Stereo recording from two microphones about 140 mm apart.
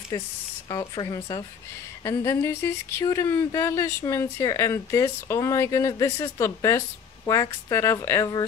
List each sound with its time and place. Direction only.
0.7 s speech: 30° left (ahead or behind)